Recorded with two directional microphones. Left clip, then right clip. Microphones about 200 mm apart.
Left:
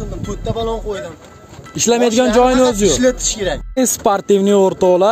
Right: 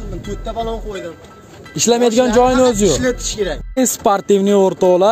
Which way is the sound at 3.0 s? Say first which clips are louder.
Left 3 dB; 40° left (ahead or behind).